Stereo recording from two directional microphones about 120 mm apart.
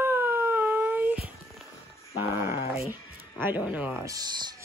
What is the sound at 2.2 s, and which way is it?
Speech, 20° right (ahead or behind).